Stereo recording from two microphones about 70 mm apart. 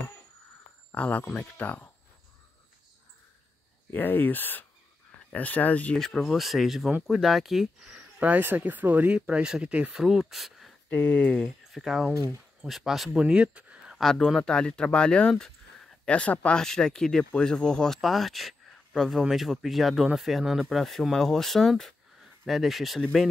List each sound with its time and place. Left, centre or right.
0.9 s speech: centre
3.9 s speech: left
5.9 s speech: centre
7.8 s speech: centre
9.9 s speech: centre
10.9 s speech: left
11.4 s speech: centre
13.1 s speech: centre
14.1 s speech: centre